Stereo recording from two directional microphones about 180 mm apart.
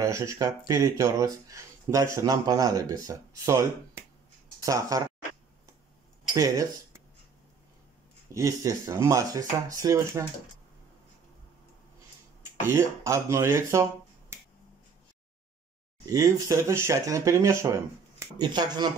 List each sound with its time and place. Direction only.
0.0 s speech: 15° right (ahead or behind)
6.3 s speech: 20° right (ahead or behind)
8.3 s speech: 15° right (ahead or behind)
12.6 s speech: 15° right (ahead or behind)
14.3 s finger snapping: 15° right (ahead or behind)
16.1 s speech: 20° right (ahead or behind)